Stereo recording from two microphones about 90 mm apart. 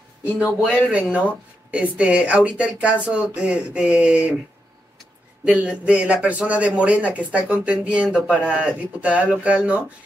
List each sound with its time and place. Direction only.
0.2 s speech: 25° left (ahead or behind)
0.8 s a man's voice: 10° right (ahead or behind)
5.4 s a man's voice: 15° right (ahead or behind)